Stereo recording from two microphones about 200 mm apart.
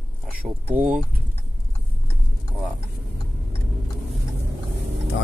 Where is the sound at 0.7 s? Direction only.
5° right (ahead or behind).